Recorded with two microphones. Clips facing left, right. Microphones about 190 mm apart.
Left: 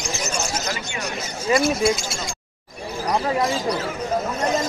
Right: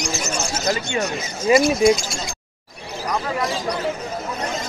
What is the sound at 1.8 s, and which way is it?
Speech, 5° left (ahead or behind).